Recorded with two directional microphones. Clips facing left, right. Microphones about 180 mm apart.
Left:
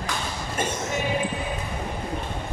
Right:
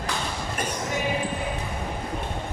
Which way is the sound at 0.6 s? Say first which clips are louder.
Left 3 dB; 25° left (ahead or behind).